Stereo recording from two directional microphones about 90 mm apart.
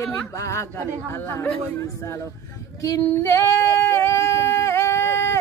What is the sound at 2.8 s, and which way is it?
Female singing, 35° left (ahead or behind).